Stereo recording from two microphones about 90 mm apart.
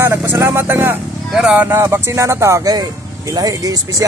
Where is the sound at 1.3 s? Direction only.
10° right (ahead or behind).